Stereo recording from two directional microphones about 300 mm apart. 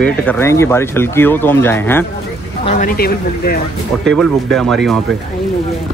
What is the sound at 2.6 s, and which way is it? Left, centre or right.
Speech, left.